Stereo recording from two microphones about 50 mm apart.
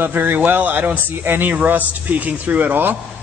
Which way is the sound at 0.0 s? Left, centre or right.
Right.